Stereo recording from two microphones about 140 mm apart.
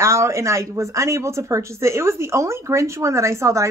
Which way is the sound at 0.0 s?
20° right (ahead or behind).